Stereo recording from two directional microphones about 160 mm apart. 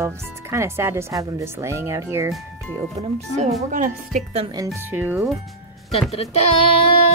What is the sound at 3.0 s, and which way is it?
A woman's voice, 45° right (ahead or behind).